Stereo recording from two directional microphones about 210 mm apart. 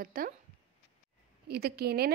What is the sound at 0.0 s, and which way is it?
Speech, 45° right (ahead or behind).